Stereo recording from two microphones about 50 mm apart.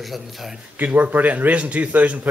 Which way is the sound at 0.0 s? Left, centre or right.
Centre.